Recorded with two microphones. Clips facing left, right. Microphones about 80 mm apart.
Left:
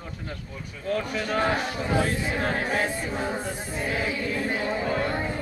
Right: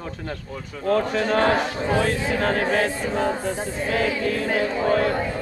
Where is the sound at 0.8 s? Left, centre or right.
Right.